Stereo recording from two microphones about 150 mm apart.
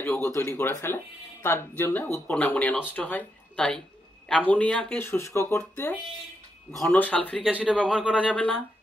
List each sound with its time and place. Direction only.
0.0 s speech: 15° left (ahead or behind)
7.4 s speech: 5° right (ahead or behind)
8.3 s speech: 10° left (ahead or behind)